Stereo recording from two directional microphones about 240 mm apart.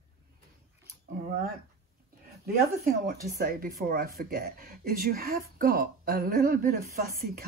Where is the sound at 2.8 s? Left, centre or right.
Right.